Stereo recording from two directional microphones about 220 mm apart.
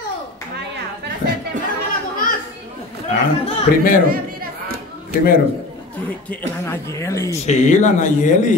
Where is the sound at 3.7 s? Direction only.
40° left (ahead or behind).